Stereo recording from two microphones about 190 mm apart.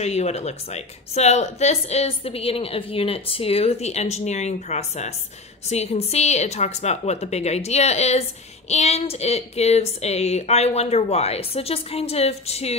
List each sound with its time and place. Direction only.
0.0 s a woman's voice: 35° left (ahead or behind)